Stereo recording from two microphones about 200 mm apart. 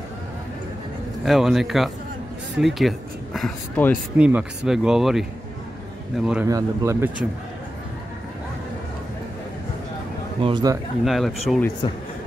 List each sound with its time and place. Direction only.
1.2 s speech: centre (ahead or behind)
3.3 s speech: 5° left (ahead or behind)
4.2 s speech: 5° right (ahead or behind)
6.4 s speech: 15° right (ahead or behind)
10.4 s a man's voice: 20° right (ahead or behind)
11.1 s speech: centre (ahead or behind)
11.8 s speech: 20° left (ahead or behind)